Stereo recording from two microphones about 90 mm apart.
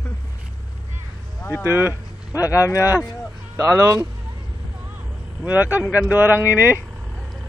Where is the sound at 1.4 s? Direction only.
30° left (ahead or behind).